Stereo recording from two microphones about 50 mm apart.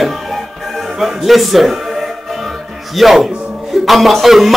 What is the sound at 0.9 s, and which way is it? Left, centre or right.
Speech, centre.